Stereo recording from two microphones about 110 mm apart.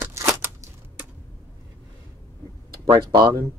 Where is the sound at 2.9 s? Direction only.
45° right (ahead or behind).